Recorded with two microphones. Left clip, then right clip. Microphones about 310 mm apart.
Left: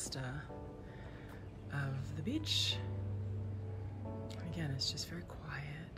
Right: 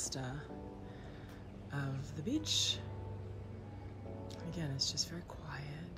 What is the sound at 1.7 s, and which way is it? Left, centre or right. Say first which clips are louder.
A woman's voice: even; centre.